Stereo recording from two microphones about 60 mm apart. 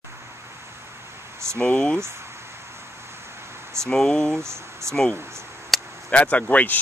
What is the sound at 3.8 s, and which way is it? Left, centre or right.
Speech, centre.